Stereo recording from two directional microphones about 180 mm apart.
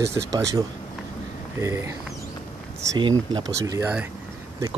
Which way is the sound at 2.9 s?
25° right (ahead or behind).